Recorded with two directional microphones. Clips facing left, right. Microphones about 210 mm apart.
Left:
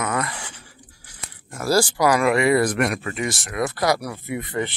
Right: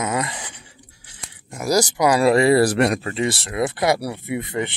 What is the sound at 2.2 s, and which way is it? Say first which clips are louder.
Speech: right 6 dB; 35° right (ahead or behind).